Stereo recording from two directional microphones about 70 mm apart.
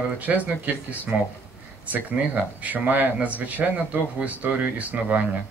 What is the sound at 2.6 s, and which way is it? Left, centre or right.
Speech, right.